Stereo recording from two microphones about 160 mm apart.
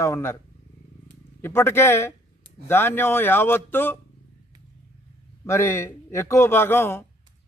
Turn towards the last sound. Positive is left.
turn(degrees=15)  # may be behind; listen again after turning